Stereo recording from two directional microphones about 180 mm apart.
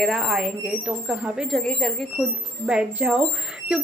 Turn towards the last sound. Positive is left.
turn(degrees=-5)  # may be behind; listen again after turning